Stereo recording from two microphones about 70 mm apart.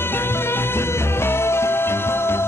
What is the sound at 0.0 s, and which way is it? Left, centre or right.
Music, left.